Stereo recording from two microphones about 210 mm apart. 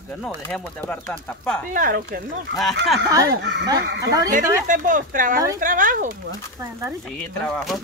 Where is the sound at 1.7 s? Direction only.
40° right (ahead or behind).